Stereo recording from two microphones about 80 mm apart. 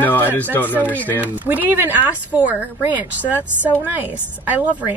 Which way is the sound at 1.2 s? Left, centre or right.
Right.